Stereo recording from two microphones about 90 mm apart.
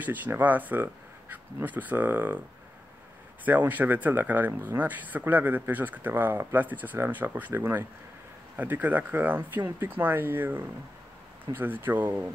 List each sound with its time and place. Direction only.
0.0 s speech: 20° right (ahead or behind)
3.4 s speech: 20° right (ahead or behind)